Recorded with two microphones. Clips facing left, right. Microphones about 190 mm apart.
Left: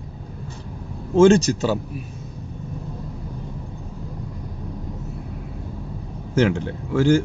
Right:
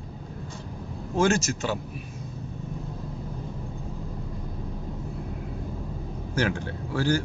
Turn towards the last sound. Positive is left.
turn(degrees=20)  # may be behind; listen again after turning